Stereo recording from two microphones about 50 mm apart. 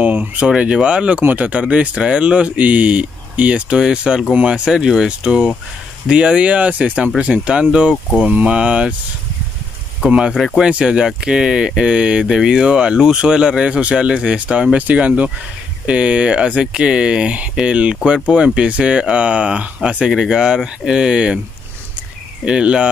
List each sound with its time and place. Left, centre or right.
0.0 s speech: right
0.6 s speech: right
3.7 s speech: centre
10.0 s speech: centre
10.3 s speech: centre
10.6 s speech: centre
20.1 s speech: centre
22.4 s speech: centre